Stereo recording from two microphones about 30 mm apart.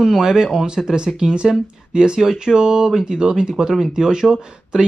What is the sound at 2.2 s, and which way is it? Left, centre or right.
Speech, centre.